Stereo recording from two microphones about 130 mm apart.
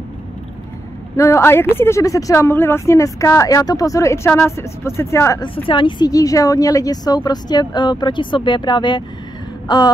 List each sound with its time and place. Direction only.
1.1 s speech: 25° left (ahead or behind)
5.7 s a woman's voice: 40° left (ahead or behind)